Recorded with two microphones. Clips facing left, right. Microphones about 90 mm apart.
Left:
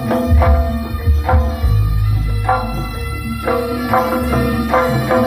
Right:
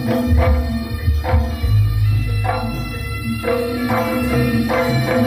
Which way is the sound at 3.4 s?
35° left (ahead or behind).